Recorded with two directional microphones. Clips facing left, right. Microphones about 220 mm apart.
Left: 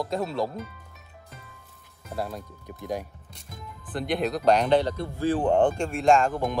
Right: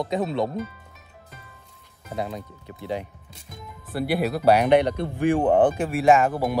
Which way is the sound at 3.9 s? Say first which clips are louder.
Right 3 dB; 10° right (ahead or behind).